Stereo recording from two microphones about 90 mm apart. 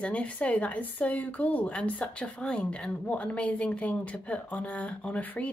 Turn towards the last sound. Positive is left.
turn(degrees=15)  # may be behind; listen again after turning